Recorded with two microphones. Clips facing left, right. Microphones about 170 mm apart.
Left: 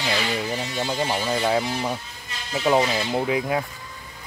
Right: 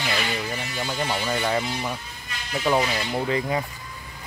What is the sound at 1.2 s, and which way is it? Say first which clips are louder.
Speech: left 3 dB; 5° left (ahead or behind).